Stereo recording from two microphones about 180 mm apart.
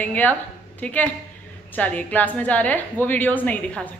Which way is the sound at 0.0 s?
10° left (ahead or behind).